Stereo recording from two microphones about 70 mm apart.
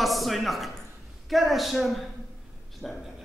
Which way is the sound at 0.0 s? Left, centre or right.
Centre.